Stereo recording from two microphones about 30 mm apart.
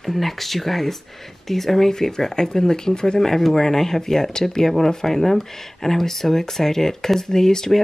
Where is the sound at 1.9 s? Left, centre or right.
Centre.